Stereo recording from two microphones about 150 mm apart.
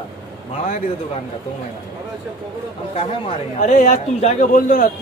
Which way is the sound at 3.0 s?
45° left (ahead or behind).